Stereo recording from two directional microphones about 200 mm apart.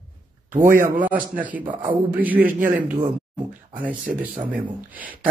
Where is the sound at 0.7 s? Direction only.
40° right (ahead or behind).